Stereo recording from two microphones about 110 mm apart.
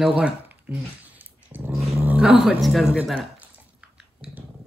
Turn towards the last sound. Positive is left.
turn(degrees=-10)  # may be behind; listen again after turning